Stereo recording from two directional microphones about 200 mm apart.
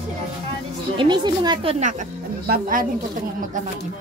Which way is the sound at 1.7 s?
40° right (ahead or behind).